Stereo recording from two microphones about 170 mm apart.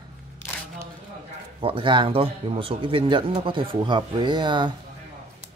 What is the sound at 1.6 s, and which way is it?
Speech, 30° right (ahead or behind).